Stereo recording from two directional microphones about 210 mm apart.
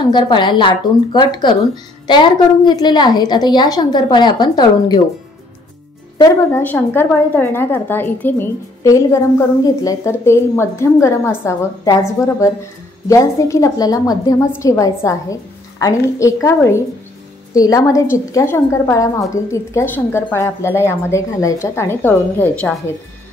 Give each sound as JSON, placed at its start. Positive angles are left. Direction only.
{"t": 0.1, "sound": "a woman's voice", "side_deg": 20}
{"t": 6.1, "sound": "speech", "side_deg": 15}
{"t": 13.1, "sound": "speech", "side_deg": 15}